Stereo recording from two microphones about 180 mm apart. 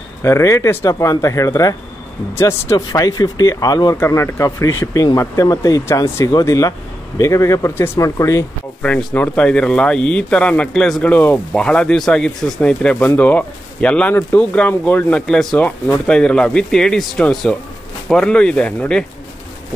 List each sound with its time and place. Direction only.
0.2 s speech: 15° left (ahead or behind)